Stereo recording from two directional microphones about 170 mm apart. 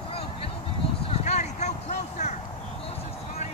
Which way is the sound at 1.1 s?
40° left (ahead or behind).